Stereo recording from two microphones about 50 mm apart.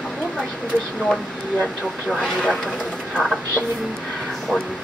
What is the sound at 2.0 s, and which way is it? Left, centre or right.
Speech, centre.